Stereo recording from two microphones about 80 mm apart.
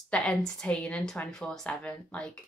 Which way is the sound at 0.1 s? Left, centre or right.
Centre.